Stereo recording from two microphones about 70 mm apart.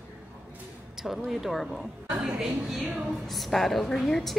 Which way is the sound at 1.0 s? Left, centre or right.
Centre.